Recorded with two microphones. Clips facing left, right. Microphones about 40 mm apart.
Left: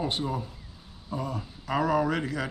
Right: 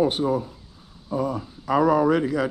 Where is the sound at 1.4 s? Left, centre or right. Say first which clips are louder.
Right 7 dB; centre.